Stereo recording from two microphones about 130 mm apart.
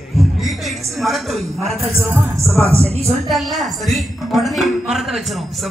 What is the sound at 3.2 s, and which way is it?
A woman's voice, centre (ahead or behind).